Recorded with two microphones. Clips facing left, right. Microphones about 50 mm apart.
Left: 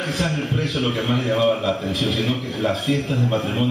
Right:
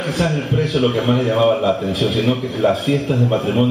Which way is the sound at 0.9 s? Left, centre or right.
Centre.